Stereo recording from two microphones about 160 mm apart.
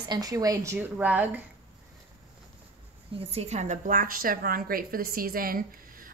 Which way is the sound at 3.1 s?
40° right (ahead or behind).